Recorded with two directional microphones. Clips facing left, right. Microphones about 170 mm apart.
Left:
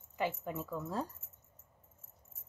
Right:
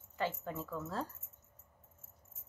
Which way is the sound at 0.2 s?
15° left (ahead or behind).